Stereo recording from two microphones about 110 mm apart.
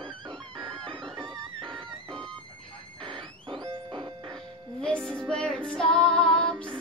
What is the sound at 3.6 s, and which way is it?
Music, 55° right (ahead or behind).